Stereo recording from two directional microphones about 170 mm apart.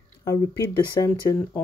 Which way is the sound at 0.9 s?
25° left (ahead or behind).